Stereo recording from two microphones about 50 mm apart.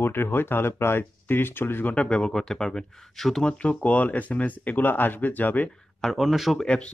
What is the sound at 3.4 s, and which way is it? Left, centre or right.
Speech, left.